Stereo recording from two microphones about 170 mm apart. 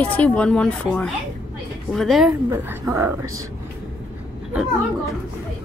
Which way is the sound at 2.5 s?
15° right (ahead or behind).